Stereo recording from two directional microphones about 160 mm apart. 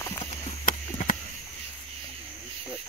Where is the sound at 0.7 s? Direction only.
60° left (ahead or behind).